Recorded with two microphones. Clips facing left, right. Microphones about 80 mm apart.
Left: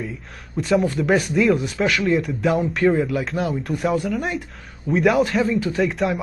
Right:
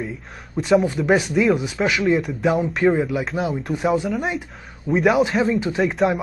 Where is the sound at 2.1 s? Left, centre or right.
Centre.